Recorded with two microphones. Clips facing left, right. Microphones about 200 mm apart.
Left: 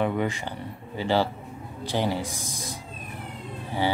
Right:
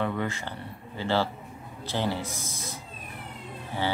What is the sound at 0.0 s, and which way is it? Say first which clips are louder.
Speech: left 4 dB; 15° left (ahead or behind).